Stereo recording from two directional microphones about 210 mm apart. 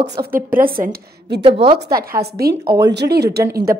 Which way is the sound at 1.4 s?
25° right (ahead or behind).